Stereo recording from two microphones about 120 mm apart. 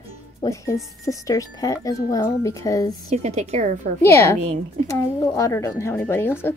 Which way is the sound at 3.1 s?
65° right (ahead or behind).